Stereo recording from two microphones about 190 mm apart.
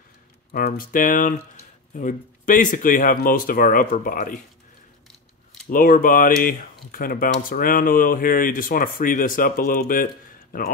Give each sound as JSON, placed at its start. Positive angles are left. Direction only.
{"t": 0.5, "sound": "speech", "side_deg": 50}
{"t": 5.7, "sound": "speech", "side_deg": 45}